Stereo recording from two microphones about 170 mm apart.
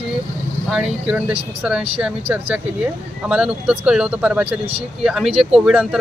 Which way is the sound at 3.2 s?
5° right (ahead or behind).